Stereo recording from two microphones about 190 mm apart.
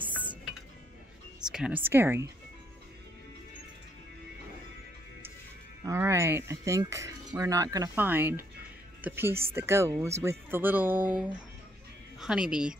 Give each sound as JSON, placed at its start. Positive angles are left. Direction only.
{"t": 1.5, "sound": "speech", "side_deg": -5}
{"t": 5.9, "sound": "speech", "side_deg": -15}